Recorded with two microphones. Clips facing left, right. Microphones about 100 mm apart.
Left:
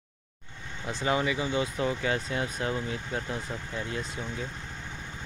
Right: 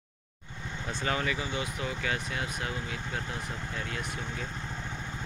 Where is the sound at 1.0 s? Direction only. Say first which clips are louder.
Left 4 dB; 20° left (ahead or behind).